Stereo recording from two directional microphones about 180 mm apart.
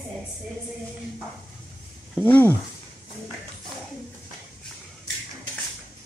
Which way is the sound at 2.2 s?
10° left (ahead or behind).